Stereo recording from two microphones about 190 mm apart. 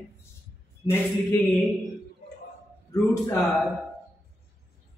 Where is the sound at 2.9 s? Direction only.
15° left (ahead or behind).